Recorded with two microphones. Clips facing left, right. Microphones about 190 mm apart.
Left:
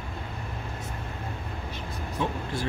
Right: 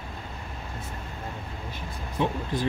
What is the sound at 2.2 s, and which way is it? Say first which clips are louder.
Speech: right 3 dB; 20° right (ahead or behind).